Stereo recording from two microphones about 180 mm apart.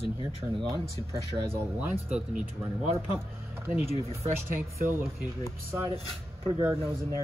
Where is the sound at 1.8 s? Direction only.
5° right (ahead or behind).